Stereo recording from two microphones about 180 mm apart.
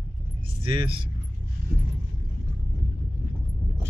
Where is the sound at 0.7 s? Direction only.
30° right (ahead or behind).